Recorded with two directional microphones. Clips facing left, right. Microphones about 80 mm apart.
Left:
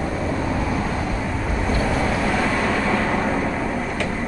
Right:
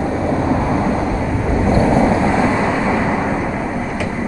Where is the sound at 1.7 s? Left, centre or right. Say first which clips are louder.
Right 9 dB; right.